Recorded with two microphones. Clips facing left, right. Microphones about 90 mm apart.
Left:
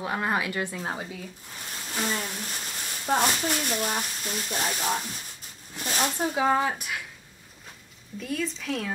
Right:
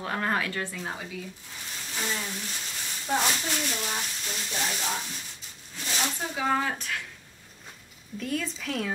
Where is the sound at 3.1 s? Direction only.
45° left (ahead or behind).